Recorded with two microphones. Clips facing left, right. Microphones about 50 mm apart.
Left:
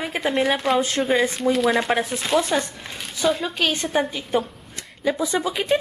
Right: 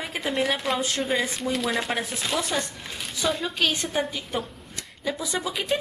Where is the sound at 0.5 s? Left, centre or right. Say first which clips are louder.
Left 5 dB; centre.